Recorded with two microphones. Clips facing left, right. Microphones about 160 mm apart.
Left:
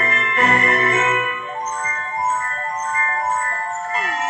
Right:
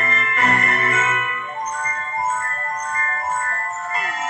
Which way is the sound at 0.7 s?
30° left (ahead or behind).